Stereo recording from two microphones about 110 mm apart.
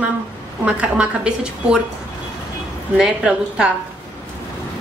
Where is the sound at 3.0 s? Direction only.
5° right (ahead or behind).